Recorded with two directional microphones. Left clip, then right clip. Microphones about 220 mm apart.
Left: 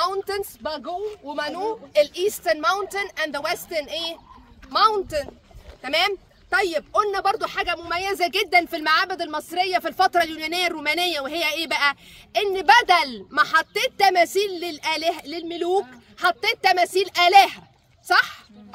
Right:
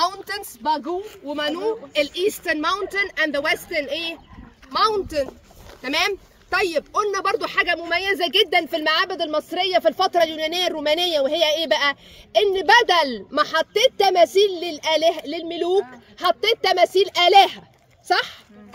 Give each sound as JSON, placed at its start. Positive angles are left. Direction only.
{"t": 0.0, "sound": "a woman's voice", "side_deg": 20}